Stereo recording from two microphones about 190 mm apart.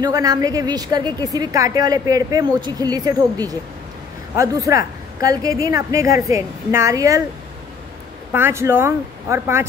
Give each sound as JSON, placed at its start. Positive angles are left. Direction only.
{"t": 0.0, "sound": "a woman's voice", "side_deg": -20}
{"t": 8.3, "sound": "a woman's voice", "side_deg": -10}